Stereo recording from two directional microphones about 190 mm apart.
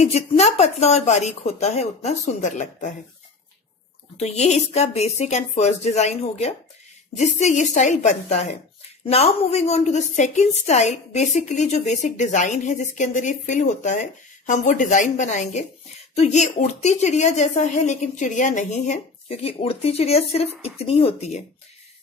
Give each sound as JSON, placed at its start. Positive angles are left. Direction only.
{"t": 0.0, "sound": "a woman's voice", "side_deg": 35}
{"t": 4.2, "sound": "a woman's voice", "side_deg": 35}